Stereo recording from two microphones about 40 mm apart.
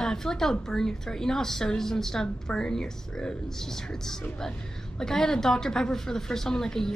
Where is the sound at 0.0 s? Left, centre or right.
Centre.